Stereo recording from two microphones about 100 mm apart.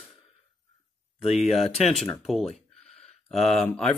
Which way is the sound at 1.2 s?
Centre (ahead or behind).